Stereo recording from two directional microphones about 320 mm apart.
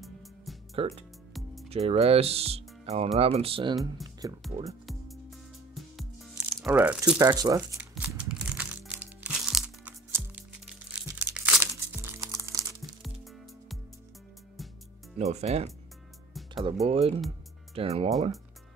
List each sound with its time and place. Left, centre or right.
0.7 s speech: centre
1.3 s music: centre
1.7 s speech: centre
4.8 s music: centre
6.3 s speech: centre
7.9 s music: centre
15.1 s speech: right
16.8 s speech: centre